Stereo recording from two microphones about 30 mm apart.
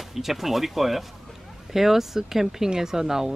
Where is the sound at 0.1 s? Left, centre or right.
Centre.